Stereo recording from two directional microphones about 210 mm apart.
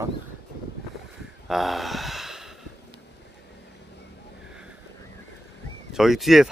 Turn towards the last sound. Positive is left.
turn(degrees=0)  # may be behind; listen again after turning